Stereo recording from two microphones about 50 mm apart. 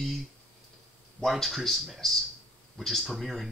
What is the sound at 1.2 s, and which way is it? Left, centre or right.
Speech, centre.